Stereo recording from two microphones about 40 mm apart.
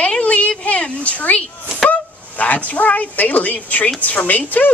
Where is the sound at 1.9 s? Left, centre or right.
Left.